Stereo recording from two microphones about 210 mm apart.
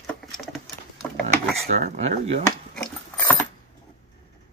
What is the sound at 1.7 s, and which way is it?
Speech, 30° right (ahead or behind).